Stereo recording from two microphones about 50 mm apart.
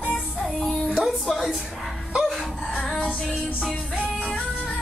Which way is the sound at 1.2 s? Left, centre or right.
Centre.